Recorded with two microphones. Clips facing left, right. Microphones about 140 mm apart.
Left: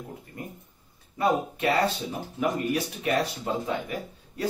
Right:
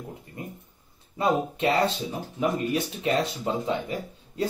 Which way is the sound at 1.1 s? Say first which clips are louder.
Even; 25° right (ahead or behind).